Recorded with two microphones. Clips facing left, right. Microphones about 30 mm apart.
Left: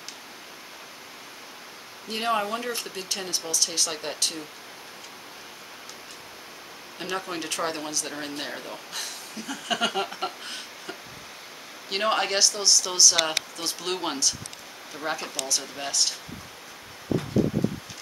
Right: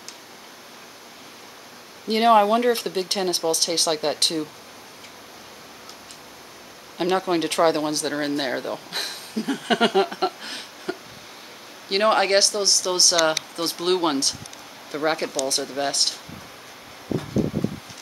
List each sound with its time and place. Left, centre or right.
2.0 s speech: right
7.0 s speech: right
10.0 s speech: centre
12.0 s speech: centre
15.0 s speech: right